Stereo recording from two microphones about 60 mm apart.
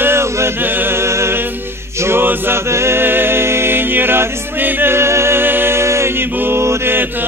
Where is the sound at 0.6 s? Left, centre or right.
Right.